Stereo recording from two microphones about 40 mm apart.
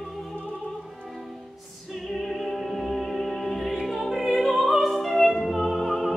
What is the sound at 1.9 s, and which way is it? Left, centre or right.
Music, centre.